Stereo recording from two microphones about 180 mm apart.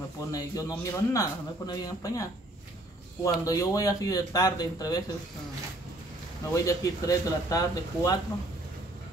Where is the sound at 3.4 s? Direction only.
20° left (ahead or behind).